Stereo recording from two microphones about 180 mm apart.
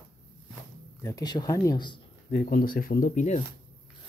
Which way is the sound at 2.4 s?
55° left (ahead or behind).